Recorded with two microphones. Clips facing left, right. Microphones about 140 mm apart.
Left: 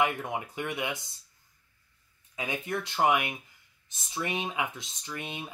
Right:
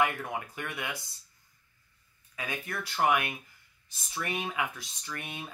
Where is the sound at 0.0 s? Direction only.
20° left (ahead or behind).